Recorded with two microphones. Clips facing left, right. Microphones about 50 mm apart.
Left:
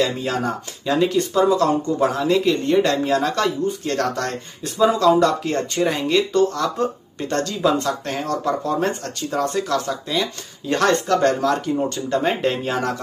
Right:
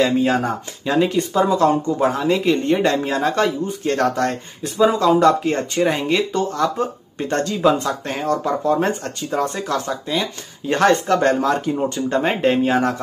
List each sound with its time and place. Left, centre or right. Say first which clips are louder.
0.0 s speech: right 4 dB; centre